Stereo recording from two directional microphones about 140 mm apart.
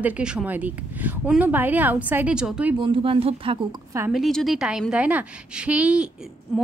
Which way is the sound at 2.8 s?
40° right (ahead or behind).